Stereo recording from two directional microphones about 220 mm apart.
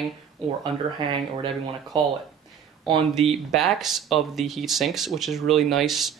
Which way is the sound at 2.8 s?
25° right (ahead or behind).